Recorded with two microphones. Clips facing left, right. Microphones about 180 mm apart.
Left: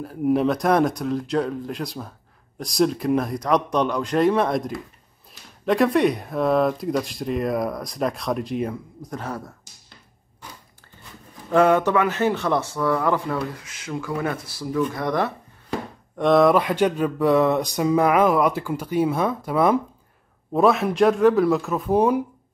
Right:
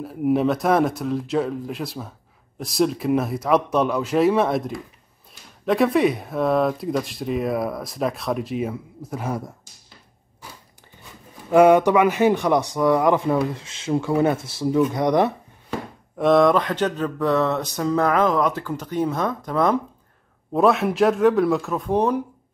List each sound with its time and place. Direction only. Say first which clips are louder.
0.0 s speech: even; centre (ahead or behind)
11.5 s speech: right 4 dB; 15° right (ahead or behind)
16.2 s speech: even; centre (ahead or behind)